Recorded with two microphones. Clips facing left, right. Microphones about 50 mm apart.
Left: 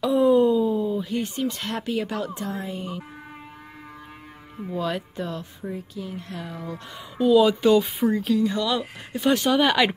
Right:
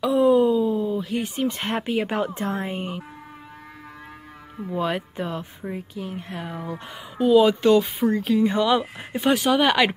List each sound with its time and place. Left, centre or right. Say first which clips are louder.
0.0 s a sound: right 1 dB; centre
1.4 s speech: right 3 dB; right
4.7 s speech: right 2 dB; right
7.2 s speech: right 1 dB; centre
8.4 s speech: right 4 dB; right
9.2 s speech: right 1 dB; centre